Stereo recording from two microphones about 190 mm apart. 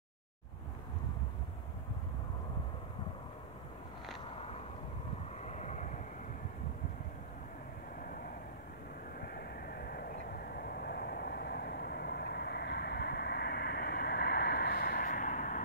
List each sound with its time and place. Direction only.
5.4 s vehicle: 40° left (ahead or behind)
8.0 s vehicle: 45° left (ahead or behind)